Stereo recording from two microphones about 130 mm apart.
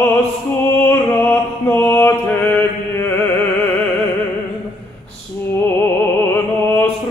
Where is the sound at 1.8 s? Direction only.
20° left (ahead or behind).